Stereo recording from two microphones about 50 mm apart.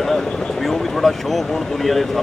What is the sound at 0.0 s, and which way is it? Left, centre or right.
Speech, centre.